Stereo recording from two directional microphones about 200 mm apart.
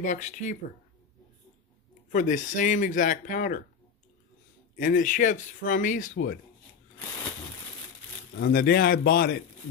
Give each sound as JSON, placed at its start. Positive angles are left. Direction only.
{"t": 0.0, "sound": "speech", "side_deg": 35}
{"t": 2.1, "sound": "speech", "side_deg": 40}
{"t": 4.7, "sound": "speech", "side_deg": 45}
{"t": 8.5, "sound": "speech", "side_deg": 50}